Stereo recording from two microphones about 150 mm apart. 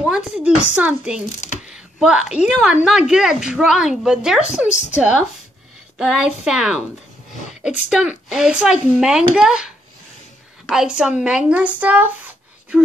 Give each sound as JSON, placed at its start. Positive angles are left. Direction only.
{"t": 0.0, "sound": "speech", "side_deg": -5}
{"t": 4.6, "sound": "a woman's voice", "side_deg": 50}
{"t": 5.9, "sound": "speech", "side_deg": -5}
{"t": 7.9, "sound": "speech", "side_deg": -5}
{"t": 10.7, "sound": "speech", "side_deg": -5}